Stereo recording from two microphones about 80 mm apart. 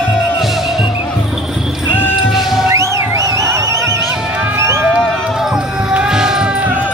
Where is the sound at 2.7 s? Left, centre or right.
Right.